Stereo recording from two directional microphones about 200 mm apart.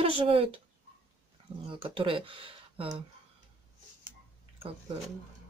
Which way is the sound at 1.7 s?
25° right (ahead or behind).